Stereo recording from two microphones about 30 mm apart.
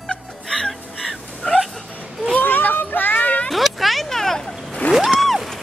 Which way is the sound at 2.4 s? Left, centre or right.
Left.